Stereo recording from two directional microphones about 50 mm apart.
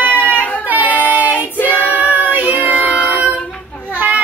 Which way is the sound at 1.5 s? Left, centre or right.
Left.